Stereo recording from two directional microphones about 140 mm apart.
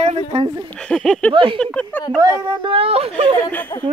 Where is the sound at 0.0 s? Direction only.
45° right (ahead or behind).